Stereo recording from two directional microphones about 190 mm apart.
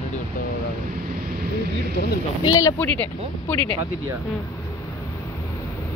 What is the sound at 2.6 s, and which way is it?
Speech, 15° left (ahead or behind).